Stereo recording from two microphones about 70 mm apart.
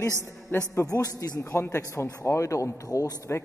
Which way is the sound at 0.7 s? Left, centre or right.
Left.